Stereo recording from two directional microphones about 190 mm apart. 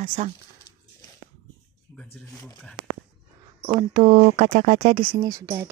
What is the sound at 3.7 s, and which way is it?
Speech, 25° right (ahead or behind).